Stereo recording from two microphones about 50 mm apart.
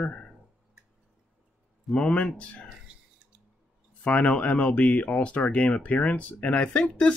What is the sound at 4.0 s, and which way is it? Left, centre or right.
Speech, left.